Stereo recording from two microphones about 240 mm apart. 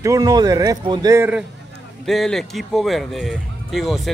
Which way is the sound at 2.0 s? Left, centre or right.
Centre.